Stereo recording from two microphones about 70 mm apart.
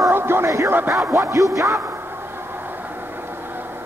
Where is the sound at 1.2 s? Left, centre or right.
Right.